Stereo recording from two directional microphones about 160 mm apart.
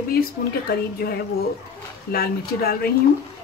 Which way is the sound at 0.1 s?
75° left (ahead or behind).